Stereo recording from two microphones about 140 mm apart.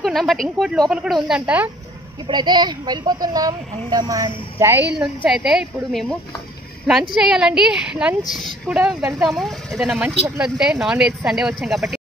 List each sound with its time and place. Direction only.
0.0 s speech: centre (ahead or behind)
2.2 s speech: 30° right (ahead or behind)
4.9 s speech: 5° right (ahead or behind)
7.2 s speech: 5° right (ahead or behind)